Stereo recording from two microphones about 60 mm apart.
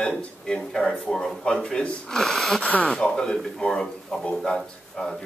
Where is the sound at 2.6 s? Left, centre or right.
Left.